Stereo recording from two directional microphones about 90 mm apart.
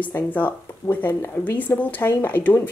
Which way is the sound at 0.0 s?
20° left (ahead or behind).